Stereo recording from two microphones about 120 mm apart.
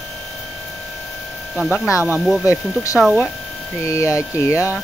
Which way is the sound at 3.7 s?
25° left (ahead or behind).